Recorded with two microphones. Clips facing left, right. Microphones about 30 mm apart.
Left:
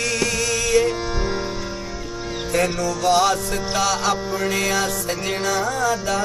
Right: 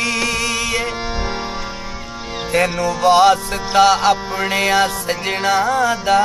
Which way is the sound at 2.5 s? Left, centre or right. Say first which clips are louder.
Right 4 dB; right.